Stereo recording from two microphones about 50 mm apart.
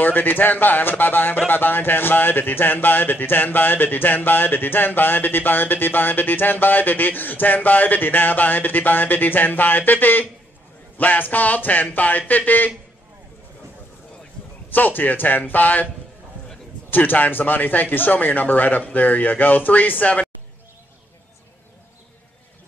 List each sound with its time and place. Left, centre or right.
0.0 s speech: left
14.7 s speech: left
16.9 s speech: left